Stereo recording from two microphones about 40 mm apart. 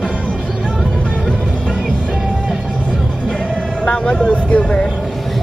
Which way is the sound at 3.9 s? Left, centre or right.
Left.